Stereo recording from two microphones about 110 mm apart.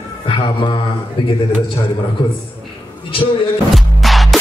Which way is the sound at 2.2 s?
50° left (ahead or behind).